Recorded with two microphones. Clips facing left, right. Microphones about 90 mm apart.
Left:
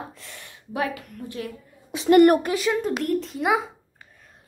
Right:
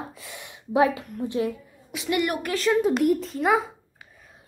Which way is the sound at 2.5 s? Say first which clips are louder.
Right 1 dB; 5° left (ahead or behind).